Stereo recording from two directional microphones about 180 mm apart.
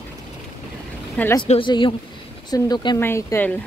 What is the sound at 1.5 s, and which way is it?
Speech, 30° left (ahead or behind).